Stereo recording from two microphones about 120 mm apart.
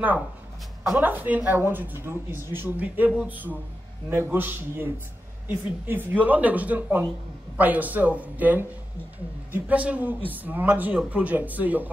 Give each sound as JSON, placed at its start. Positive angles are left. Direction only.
{"t": 0.9, "sound": "speech", "side_deg": -15}